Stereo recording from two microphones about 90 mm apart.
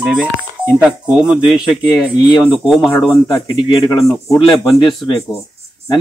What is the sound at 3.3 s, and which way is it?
Speech, 60° left (ahead or behind).